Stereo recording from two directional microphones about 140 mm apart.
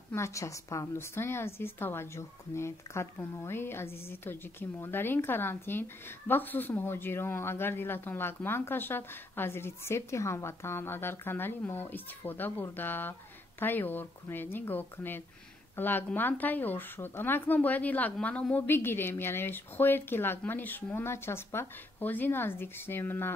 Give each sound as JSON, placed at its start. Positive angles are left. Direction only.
{"t": 0.1, "sound": "a woman's voice", "side_deg": 20}